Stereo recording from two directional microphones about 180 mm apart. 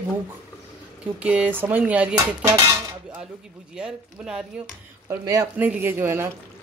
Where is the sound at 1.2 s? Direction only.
5° right (ahead or behind).